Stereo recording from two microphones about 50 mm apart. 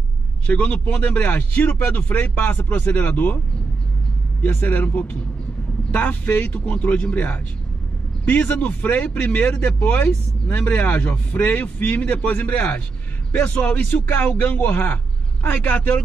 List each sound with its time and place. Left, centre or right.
0.5 s speech: left
4.4 s speech: left
6.4 s speech: left
8.3 s speech: left
13.8 s speech: left